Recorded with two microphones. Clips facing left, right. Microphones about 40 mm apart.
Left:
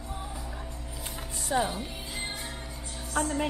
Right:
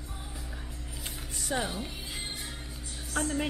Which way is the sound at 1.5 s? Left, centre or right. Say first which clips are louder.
Left 5 dB; centre.